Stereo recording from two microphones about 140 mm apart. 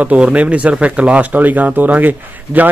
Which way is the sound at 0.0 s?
10° right (ahead or behind).